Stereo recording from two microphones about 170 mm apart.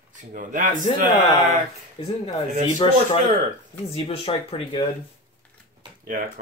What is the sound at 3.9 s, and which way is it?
Speech, 35° left (ahead or behind).